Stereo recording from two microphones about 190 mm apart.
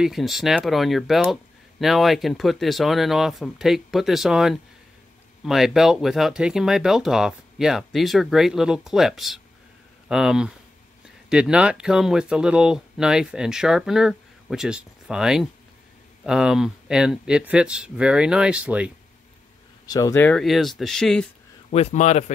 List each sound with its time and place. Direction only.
0.0 s speech: centre (ahead or behind)
19.9 s speech: 15° left (ahead or behind)
21.6 s a man's voice: 35° left (ahead or behind)